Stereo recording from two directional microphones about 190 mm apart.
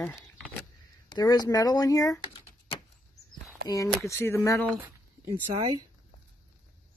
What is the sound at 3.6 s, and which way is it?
Speech, 15° left (ahead or behind).